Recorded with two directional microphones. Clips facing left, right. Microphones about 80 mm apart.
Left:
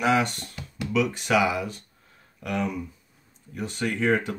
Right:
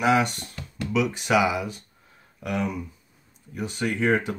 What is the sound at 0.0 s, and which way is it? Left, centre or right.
Speech, centre.